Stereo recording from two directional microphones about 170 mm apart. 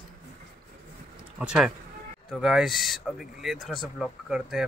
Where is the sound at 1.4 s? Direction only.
5° right (ahead or behind).